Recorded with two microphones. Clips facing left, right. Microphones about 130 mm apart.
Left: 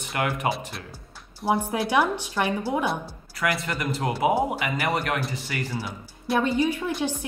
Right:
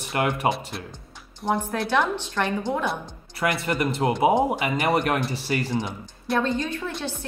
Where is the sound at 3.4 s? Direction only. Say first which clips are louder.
Right 3 dB; 30° right (ahead or behind).